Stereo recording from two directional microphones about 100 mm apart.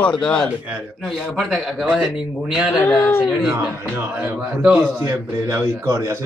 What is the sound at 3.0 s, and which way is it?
Speech, 25° left (ahead or behind).